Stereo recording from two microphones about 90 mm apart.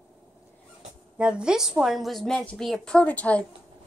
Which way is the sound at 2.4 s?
15° left (ahead or behind).